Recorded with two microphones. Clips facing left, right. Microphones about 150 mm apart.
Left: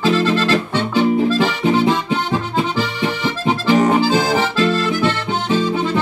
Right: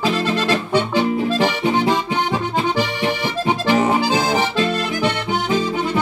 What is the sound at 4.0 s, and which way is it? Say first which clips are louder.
Accordion: left 2 dB; 15° right (ahead or behind).